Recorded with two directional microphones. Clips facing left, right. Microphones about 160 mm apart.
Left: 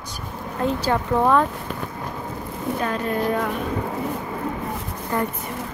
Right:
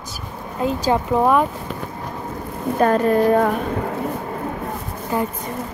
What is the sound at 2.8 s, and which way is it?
Speech, 50° right (ahead or behind).